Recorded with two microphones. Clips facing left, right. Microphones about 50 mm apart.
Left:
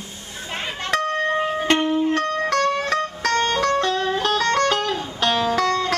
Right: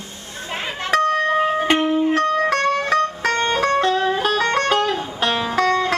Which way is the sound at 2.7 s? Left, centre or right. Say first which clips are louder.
Right 3 dB; centre.